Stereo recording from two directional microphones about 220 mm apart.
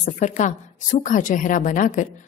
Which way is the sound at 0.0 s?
35° left (ahead or behind).